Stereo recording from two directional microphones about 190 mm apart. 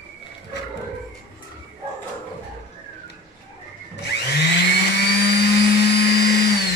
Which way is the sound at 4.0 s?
60° left (ahead or behind).